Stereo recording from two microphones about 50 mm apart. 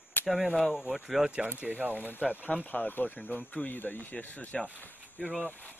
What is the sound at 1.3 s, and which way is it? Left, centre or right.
Speech, right.